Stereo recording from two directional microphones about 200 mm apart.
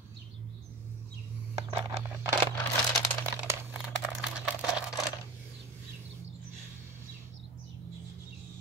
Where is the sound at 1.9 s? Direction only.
10° right (ahead or behind).